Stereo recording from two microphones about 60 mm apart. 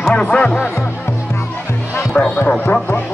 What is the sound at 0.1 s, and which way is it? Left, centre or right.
Speech, centre.